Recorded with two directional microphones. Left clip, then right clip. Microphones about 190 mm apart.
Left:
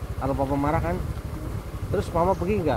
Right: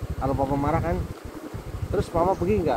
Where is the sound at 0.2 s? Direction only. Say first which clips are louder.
Even; 20° right (ahead or behind).